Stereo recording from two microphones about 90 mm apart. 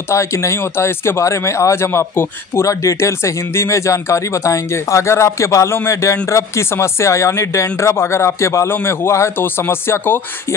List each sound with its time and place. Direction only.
0.1 s speech: 35° left (ahead or behind)